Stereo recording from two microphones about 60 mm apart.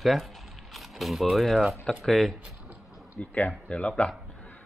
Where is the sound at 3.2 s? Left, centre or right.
Left.